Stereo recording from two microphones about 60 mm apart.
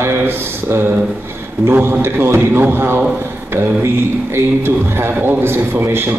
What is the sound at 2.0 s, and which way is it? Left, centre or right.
A man's voice, right.